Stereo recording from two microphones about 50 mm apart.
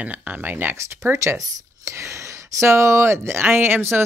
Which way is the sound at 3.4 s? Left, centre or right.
Right.